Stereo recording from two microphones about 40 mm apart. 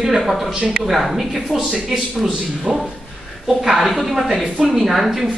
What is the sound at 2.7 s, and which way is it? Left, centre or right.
Speech, centre.